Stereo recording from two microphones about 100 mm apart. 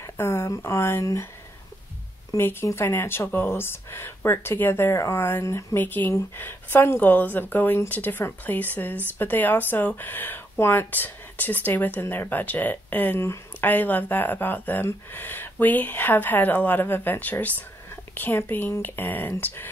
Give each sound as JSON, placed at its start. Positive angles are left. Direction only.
{"t": 0.0, "sound": "speech", "side_deg": 25}
{"t": 2.3, "sound": "speech", "side_deg": 25}
{"t": 5.8, "sound": "speech", "side_deg": 20}